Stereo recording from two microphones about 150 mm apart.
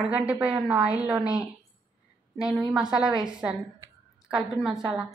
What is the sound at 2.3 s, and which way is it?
A woman's voice, 5° right (ahead or behind).